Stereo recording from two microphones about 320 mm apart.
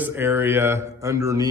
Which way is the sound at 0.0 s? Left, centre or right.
Centre.